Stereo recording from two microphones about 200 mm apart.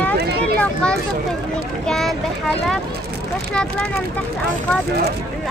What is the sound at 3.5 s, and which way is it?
Speech, 5° left (ahead or behind).